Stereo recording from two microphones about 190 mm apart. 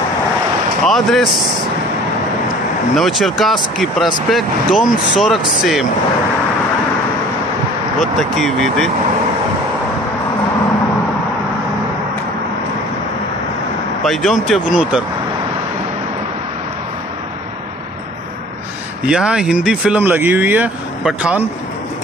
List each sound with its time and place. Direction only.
0.8 s speech: centre (ahead or behind)
3.0 s speech: centre (ahead or behind)
8.0 s speech: centre (ahead or behind)
14.0 s speech: centre (ahead or behind)
19.0 s speech: 5° right (ahead or behind)